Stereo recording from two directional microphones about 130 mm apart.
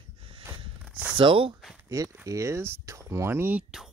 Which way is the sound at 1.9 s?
25° right (ahead or behind).